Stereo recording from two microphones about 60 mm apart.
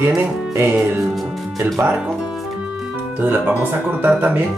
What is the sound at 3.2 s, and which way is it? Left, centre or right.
Speech, right.